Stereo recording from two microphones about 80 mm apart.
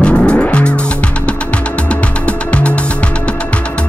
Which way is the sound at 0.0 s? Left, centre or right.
Centre.